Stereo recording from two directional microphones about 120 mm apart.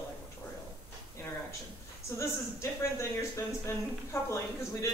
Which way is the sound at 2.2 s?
25° left (ahead or behind).